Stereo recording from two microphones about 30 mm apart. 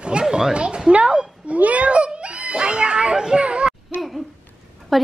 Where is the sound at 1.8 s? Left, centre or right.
Right.